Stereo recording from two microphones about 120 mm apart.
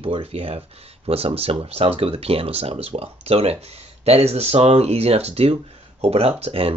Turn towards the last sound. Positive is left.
turn(degrees=-55)  # may be behind; listen again after turning